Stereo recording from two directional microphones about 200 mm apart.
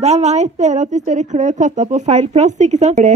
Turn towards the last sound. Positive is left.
turn(degrees=-35)  # may be behind; listen again after turning